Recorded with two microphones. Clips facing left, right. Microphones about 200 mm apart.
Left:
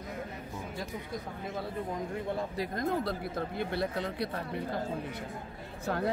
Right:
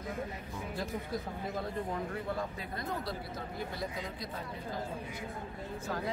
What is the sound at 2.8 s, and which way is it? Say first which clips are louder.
Speech: left 6 dB; 55° left (ahead or behind).